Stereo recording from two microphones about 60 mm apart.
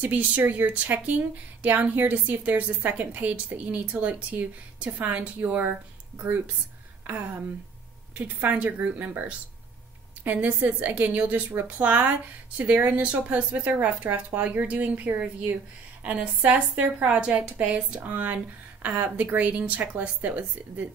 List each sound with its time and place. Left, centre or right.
0.0 s a woman's voice: right
10.2 s a woman's voice: right